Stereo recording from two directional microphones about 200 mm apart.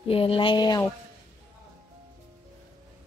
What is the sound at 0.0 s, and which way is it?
Speech, 30° left (ahead or behind).